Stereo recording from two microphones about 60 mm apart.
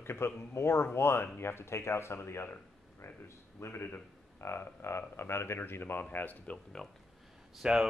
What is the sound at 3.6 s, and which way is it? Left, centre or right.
Speech, left.